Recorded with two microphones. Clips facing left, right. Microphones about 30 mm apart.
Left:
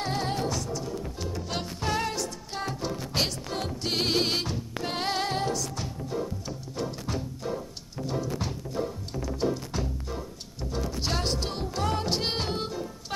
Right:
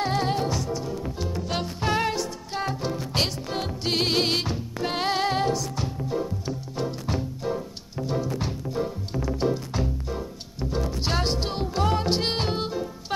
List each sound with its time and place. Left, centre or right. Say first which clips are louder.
0.0 s music: right 4 dB; centre